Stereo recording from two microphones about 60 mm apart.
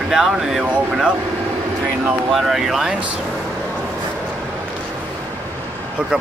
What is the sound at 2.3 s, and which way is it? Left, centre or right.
Speech, centre.